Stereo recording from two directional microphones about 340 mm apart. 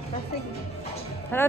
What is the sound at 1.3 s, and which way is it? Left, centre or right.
Speech, centre.